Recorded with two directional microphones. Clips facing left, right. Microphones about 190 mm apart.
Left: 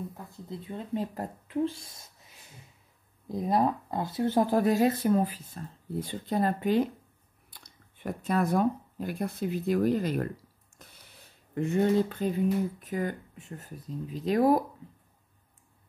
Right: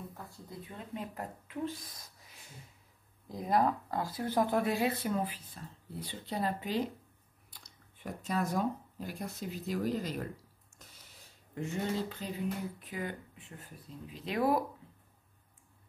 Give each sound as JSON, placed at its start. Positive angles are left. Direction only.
{"t": 0.2, "sound": "speech", "side_deg": 20}
{"t": 3.3, "sound": "speech", "side_deg": 20}
{"t": 11.5, "sound": "speech", "side_deg": 55}